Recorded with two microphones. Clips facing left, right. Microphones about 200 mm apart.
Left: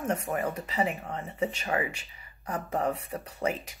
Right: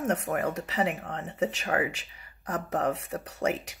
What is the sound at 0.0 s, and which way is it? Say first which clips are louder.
Speech: right 2 dB; 80° right.